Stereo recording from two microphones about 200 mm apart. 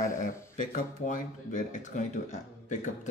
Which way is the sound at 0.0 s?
40° left (ahead or behind).